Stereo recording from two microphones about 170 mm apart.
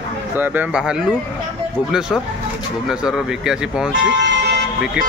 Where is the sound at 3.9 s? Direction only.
90° right.